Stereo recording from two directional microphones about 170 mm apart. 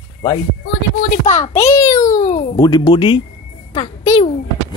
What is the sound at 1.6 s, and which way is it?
A child's voice, 20° left (ahead or behind).